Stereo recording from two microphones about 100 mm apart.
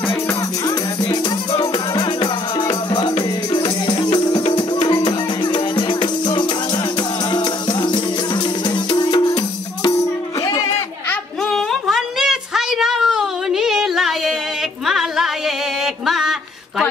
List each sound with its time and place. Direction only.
2.2 s music: 45° left (ahead or behind)
10.4 s music: 35° left (ahead or behind)
11.4 s a sound: centre (ahead or behind)
14.9 s music: 5° right (ahead or behind)